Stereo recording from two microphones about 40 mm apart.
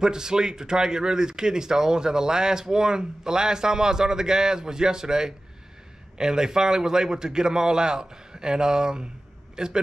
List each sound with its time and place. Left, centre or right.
0.0 s speech: centre